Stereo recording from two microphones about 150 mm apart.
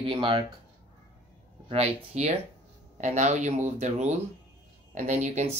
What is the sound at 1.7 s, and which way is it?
Speech, 45° right (ahead or behind).